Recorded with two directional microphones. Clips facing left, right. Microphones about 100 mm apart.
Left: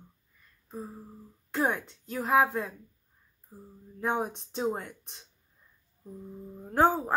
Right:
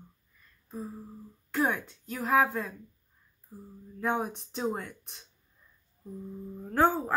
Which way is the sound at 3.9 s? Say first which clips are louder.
Even; 25° left (ahead or behind).